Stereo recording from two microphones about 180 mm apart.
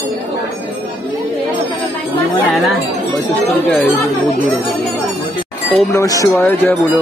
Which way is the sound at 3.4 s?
10° left (ahead or behind).